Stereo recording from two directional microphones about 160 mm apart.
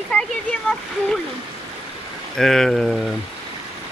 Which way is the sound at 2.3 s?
Centre (ahead or behind).